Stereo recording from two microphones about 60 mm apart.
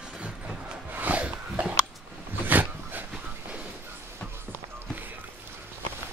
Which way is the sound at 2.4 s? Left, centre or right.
Right.